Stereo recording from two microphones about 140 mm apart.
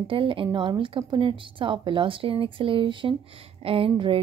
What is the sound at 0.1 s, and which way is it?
A woman's voice, 40° right (ahead or behind).